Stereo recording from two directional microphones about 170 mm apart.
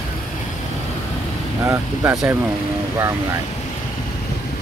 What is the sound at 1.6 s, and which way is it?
Speech, 20° right (ahead or behind).